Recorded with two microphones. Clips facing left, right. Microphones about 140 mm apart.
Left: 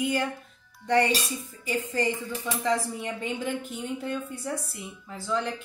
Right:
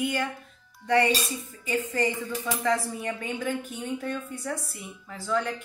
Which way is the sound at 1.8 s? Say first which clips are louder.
Left 1 dB; 15° right (ahead or behind).